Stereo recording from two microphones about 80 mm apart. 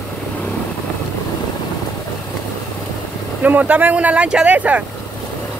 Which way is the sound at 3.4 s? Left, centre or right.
Centre.